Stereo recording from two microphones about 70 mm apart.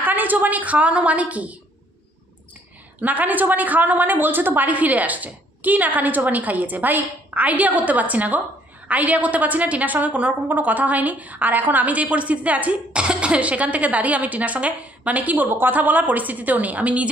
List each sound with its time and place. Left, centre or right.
0.0 s a woman's voice: right
3.0 s a woman's voice: right